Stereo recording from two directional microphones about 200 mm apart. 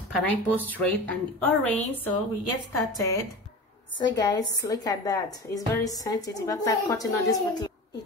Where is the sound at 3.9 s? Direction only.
20° left (ahead or behind).